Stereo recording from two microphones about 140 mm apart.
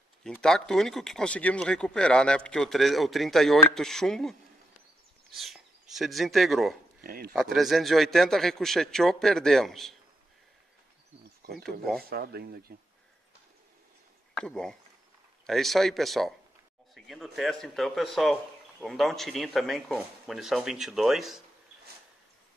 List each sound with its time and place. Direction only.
0.2 s speech: 5° left (ahead or behind)
7.0 s speech: 90° right
7.3 s speech: centre (ahead or behind)
11.5 s speech: centre (ahead or behind)
12.0 s speech: 90° right
14.3 s speech: 5° left (ahead or behind)